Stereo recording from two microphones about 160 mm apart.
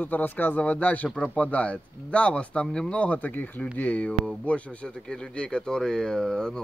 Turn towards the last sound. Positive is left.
turn(degrees=5)  # may be behind; listen again after turning